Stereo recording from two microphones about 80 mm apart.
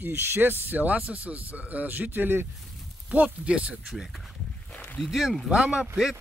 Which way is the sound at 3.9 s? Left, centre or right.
Centre.